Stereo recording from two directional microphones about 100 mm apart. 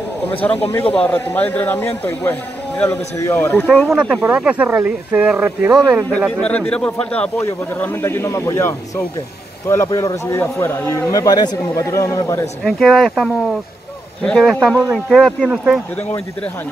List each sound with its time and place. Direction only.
0.3 s a man's voice: 15° left (ahead or behind)
2.9 s a man's voice: 30° left (ahead or behind)
3.3 s a man's voice: 10° left (ahead or behind)
3.9 s speech: 5° right (ahead or behind)
5.7 s a man's voice: 5° left (ahead or behind); by 11.0 s 25° left (ahead or behind)
11.1 s a man's voice: 40° left (ahead or behind)
12.6 s speech: centre (ahead or behind)